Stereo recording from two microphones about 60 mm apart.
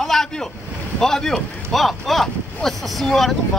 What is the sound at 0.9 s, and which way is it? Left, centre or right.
Speech, centre.